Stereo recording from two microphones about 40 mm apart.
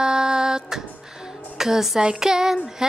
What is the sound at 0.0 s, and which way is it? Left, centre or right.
Music, centre.